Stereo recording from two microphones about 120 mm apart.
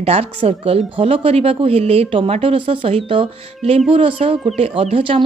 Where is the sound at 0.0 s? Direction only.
60° right (ahead or behind).